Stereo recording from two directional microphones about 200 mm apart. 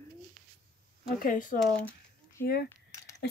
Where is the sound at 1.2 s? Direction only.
40° left (ahead or behind).